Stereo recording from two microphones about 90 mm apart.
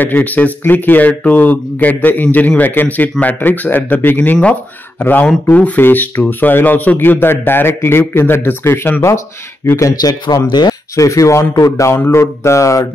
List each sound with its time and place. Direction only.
0.0 s speech: 20° left (ahead or behind)
9.8 s speech: 40° left (ahead or behind)